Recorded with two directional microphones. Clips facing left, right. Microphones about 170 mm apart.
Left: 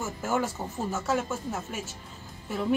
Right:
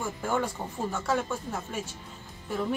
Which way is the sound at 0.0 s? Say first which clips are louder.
Left 1 dB; 5° left (ahead or behind).